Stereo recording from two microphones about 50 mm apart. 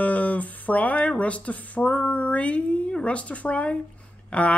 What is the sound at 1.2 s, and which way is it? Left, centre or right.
A man's voice, left.